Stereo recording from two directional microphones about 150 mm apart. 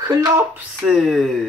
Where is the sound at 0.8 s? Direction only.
Centre (ahead or behind).